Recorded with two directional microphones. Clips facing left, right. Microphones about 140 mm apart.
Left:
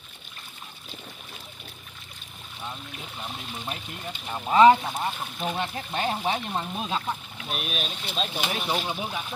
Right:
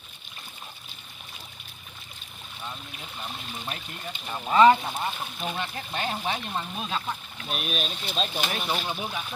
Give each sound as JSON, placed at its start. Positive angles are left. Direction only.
{"t": 4.3, "sound": "speech", "side_deg": 15}
{"t": 5.6, "sound": "speech", "side_deg": 25}
{"t": 6.5, "sound": "speech", "side_deg": 15}